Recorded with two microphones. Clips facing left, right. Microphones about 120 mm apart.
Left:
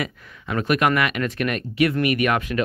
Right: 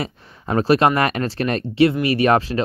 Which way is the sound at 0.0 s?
35° right (ahead or behind).